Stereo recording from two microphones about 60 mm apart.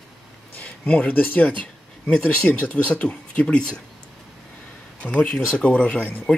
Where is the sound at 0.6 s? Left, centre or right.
Left.